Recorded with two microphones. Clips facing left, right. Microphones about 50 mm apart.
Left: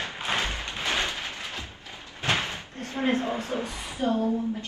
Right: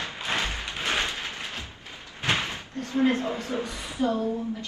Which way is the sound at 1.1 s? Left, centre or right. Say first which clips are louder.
Right 1 dB; right.